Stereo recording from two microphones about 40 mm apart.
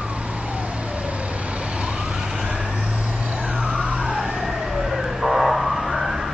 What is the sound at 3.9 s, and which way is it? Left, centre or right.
Emergency vehicle, centre.